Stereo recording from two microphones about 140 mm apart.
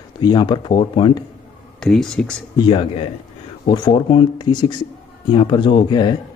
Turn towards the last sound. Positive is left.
turn(degrees=35)  # may be behind; listen again after turning